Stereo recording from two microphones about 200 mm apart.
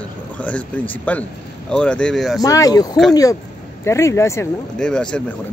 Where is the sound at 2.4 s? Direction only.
20° left (ahead or behind).